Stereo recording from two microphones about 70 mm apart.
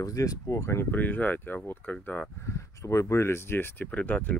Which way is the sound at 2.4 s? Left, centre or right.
Left.